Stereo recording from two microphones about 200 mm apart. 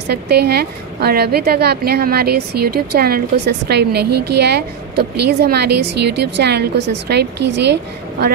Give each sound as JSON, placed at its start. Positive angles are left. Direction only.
{"t": 0.0, "sound": "a woman's voice", "side_deg": -55}